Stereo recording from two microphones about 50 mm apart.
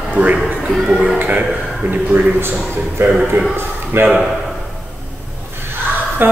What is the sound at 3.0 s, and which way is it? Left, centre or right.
A man's voice, right.